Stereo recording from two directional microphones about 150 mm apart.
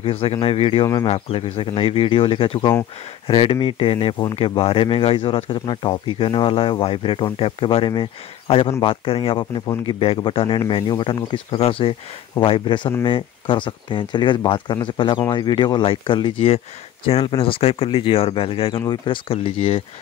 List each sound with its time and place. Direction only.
0.0 s speech: 40° left (ahead or behind)